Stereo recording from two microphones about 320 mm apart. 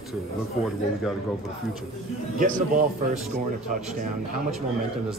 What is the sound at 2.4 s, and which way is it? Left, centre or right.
Speech, right.